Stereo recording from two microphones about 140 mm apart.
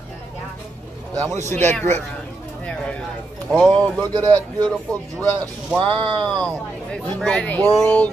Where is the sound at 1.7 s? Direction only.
15° left (ahead or behind).